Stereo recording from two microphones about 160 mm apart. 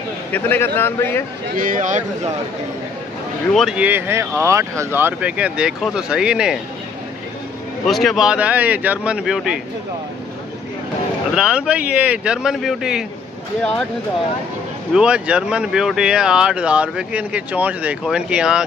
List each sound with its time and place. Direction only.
0.3 s a man's voice: 15° left (ahead or behind)
1.6 s speech: 55° right (ahead or behind)
3.5 s speech: 5° right (ahead or behind)
7.8 s speech: centre (ahead or behind)
11.3 s speech: 5° right (ahead or behind)
15.0 s speech: 5° right (ahead or behind)